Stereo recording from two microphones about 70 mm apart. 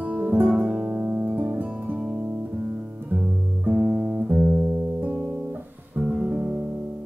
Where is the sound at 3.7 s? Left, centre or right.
Centre.